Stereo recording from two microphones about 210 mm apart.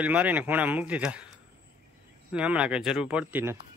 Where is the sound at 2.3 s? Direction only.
5° right (ahead or behind).